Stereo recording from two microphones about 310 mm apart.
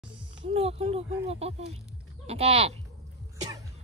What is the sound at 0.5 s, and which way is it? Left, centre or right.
Speech, centre.